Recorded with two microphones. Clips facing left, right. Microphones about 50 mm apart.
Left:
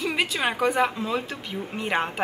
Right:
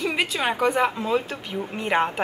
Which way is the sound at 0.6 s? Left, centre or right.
Centre.